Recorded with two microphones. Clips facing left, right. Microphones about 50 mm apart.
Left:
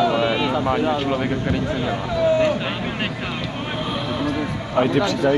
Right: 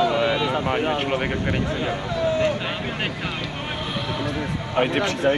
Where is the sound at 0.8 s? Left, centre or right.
Right.